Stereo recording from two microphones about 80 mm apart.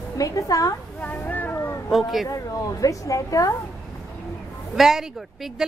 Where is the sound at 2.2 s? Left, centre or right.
Left.